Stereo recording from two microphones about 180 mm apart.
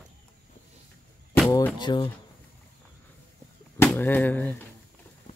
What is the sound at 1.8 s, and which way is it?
Speech, 25° left (ahead or behind).